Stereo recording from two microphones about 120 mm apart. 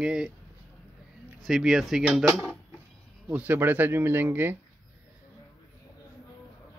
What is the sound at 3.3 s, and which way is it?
Speech, 15° right (ahead or behind).